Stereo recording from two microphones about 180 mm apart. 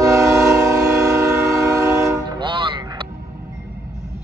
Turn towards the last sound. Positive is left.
turn(degrees=-25)  # may be behind; listen again after turning